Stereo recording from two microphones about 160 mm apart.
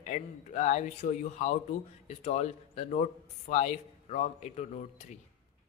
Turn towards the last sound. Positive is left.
turn(degrees=45)  # may be behind; listen again after turning